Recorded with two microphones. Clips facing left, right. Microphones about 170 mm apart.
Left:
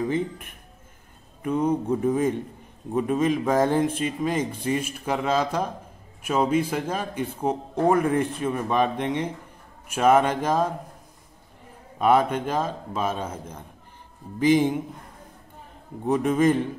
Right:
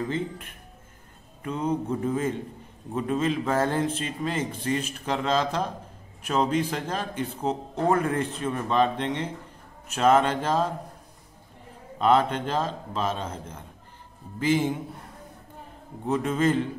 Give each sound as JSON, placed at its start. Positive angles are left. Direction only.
{"t": 0.1, "sound": "speech", "side_deg": 15}
{"t": 12.0, "sound": "speech", "side_deg": 10}
{"t": 16.1, "sound": "speech", "side_deg": 15}